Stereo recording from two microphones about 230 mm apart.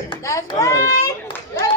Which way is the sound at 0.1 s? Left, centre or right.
Centre.